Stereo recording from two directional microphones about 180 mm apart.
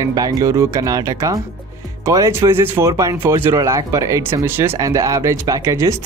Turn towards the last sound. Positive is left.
turn(degrees=-15)  # may be behind; listen again after turning